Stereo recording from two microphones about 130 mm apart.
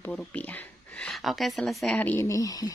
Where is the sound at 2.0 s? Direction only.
15° left (ahead or behind).